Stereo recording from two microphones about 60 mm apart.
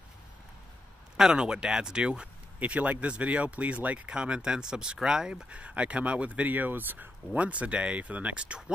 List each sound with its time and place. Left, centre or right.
1.1 s speech: centre